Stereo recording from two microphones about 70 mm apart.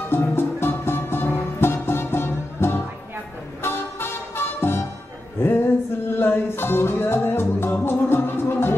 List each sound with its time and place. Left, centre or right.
0.1 s music: left
6.0 s music: left